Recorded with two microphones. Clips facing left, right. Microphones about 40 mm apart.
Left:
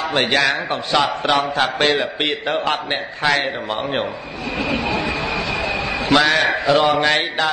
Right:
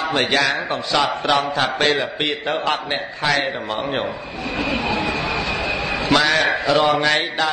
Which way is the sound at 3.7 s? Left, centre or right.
Left.